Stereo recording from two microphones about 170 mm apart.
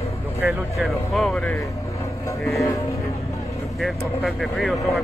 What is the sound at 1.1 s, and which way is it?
Speech, centre (ahead or behind).